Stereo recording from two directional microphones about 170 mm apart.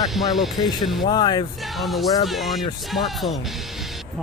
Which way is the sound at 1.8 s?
Centre (ahead or behind).